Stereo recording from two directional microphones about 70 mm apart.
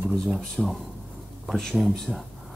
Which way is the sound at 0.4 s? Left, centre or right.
Centre.